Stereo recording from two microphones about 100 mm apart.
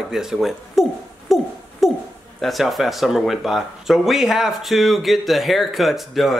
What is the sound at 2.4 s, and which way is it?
Speech, centre (ahead or behind).